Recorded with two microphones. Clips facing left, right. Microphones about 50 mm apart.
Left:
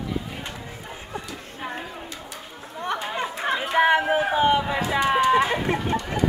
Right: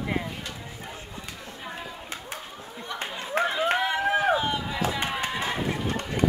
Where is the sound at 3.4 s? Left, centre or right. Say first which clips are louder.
Right 6 dB; right.